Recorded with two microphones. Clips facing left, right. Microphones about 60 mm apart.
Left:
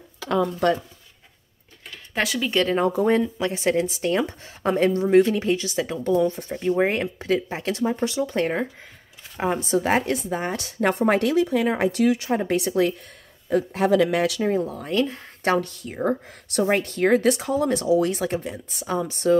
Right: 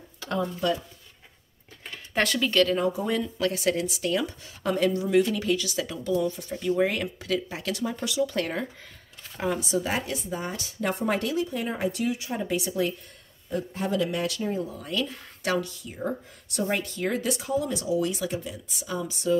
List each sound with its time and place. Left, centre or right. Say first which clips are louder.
0.4 s speech: left 6 dB; left
2.1 s speech: even; centre
2.5 s speech: left 1 dB; left
2.8 s speech: left 6 dB; left
3.3 s a woman's voice: left 3 dB; left
6.0 s a woman's voice: left 5 dB; left
13.7 s speech: left 8 dB; left
14.6 s a woman's voice: left 6 dB; left
15.6 s speech: left 7 dB; left